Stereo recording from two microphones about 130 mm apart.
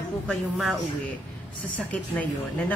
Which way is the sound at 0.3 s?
Centre (ahead or behind).